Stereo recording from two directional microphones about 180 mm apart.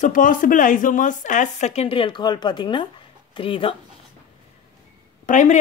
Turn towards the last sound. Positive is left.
turn(degrees=45)  # may be behind; listen again after turning